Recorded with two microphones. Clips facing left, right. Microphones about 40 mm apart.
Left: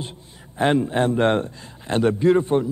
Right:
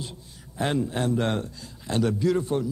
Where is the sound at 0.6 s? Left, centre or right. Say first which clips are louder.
Left 7 dB; left.